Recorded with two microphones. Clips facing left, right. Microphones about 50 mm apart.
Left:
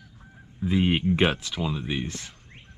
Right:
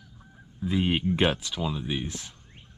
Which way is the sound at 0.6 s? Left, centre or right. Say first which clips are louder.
Left 3 dB; centre.